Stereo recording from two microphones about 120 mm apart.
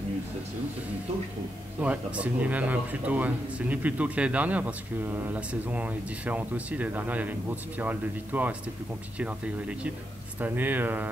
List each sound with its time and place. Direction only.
1.8 s speech: 10° right (ahead or behind)